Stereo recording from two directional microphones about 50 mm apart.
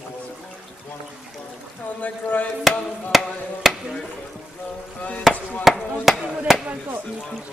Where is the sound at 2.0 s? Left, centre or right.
Left.